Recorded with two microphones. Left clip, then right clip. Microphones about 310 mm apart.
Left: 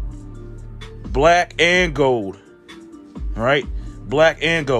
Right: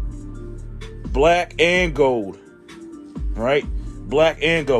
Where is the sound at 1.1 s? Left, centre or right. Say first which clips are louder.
Left 2 dB; left.